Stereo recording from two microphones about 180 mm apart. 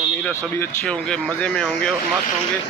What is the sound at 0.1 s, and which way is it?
A man's voice, 10° left (ahead or behind).